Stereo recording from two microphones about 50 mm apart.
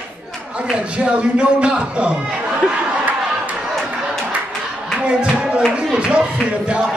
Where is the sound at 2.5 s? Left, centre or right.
Right.